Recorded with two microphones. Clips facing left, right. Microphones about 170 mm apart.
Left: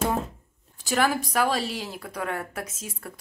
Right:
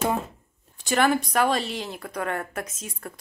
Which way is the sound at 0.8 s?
5° left (ahead or behind).